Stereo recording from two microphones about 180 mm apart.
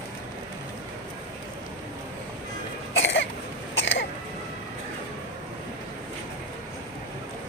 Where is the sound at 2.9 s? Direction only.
90° left.